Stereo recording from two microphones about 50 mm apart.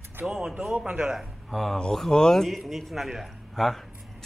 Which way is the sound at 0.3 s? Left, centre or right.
Centre.